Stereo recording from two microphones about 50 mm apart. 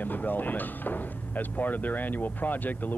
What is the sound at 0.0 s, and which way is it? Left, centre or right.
Speech, left.